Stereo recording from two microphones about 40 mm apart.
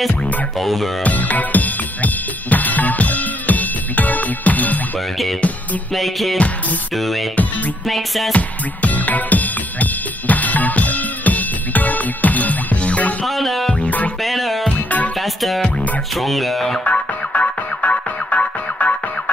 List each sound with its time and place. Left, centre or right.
0.6 s speech: centre
1.0 s music: left
5.9 s speech: centre
8.3 s music: left
13.3 s music: centre
13.7 s music: left
14.2 s music: centre
16.2 s speech: centre
16.8 s music: left